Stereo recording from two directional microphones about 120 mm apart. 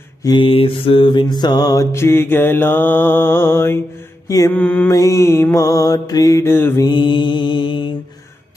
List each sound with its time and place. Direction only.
0.4 s mantra: 50° left (ahead or behind); by 4.8 s 15° left (ahead or behind)
4.8 s mantra: 30° left (ahead or behind)
6.4 s mantra: 20° left (ahead or behind)
6.8 s mantra: 40° left (ahead or behind)